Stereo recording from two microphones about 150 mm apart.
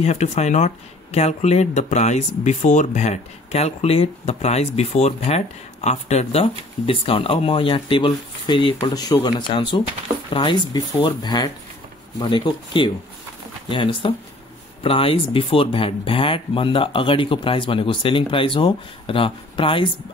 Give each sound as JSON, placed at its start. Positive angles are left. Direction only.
{"t": 0.0, "sound": "speech", "side_deg": 45}